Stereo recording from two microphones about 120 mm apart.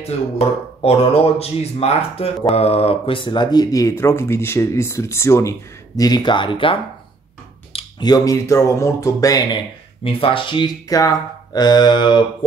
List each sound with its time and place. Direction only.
0.0 s speech: 55° left (ahead or behind)
8.0 s speech: 30° left (ahead or behind)
10.0 s speech: 50° left (ahead or behind)